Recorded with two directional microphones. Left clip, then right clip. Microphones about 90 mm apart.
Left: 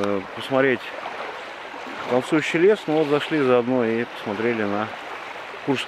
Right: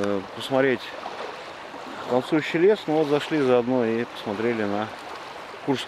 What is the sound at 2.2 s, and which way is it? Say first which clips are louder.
Speech: left 2 dB; centre (ahead or behind).